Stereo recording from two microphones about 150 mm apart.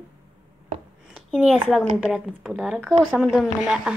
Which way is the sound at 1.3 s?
5° right (ahead or behind).